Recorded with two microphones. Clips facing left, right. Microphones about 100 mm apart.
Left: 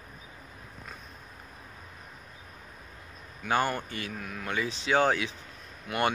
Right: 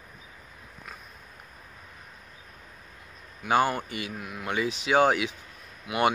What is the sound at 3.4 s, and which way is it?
Speech, 15° right (ahead or behind).